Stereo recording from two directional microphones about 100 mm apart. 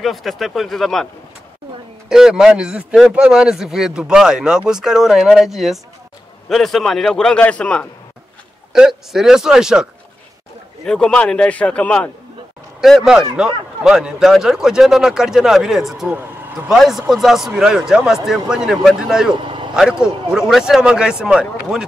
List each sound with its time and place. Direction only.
0.0 s a man's voice: centre (ahead or behind)
2.0 s a man's voice: 5° right (ahead or behind); by 7.9 s 10° left (ahead or behind)
8.7 s a man's voice: 5° right (ahead or behind)
10.9 s a man's voice: 10° left (ahead or behind)
12.8 s a man's voice: centre (ahead or behind)
16.2 s vehicle: 20° right (ahead or behind)
16.7 s a man's voice: centre (ahead or behind)
19.4 s vehicle: 55° right (ahead or behind)
19.7 s speech: 5° right (ahead or behind)